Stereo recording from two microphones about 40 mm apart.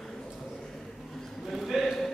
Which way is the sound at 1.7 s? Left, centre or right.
Centre.